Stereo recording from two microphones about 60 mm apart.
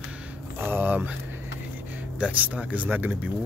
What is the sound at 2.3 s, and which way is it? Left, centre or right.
Speech, right.